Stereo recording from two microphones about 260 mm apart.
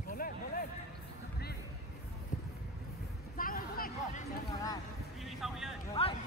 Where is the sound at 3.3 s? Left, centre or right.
Left.